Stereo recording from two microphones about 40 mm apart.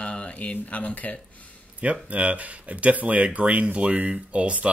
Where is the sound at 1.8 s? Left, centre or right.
Right.